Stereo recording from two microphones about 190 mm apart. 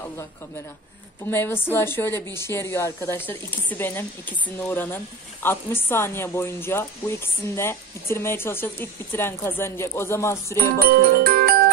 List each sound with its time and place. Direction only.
1.2 s speech: 10° left (ahead or behind)
10.9 s music: 50° right (ahead or behind)